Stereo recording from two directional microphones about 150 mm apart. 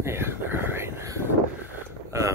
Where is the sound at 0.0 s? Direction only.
15° right (ahead or behind).